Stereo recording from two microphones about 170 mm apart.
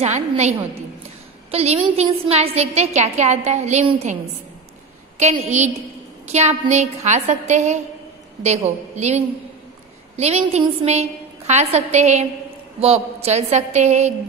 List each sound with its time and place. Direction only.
0.0 s a woman's voice: 40° right (ahead or behind)